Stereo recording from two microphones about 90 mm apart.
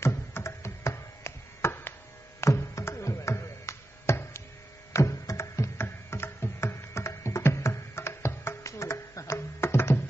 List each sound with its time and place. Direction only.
0.0 s tabla: 30° left (ahead or behind)
2.4 s music: 30° left (ahead or behind)